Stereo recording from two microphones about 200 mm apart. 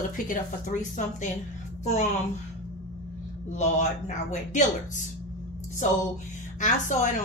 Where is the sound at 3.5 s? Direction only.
35° left (ahead or behind).